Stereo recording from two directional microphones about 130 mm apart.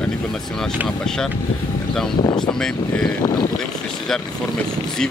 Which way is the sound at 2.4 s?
5° left (ahead or behind).